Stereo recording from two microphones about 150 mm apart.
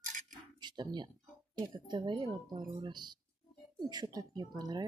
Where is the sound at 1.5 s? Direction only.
30° right (ahead or behind).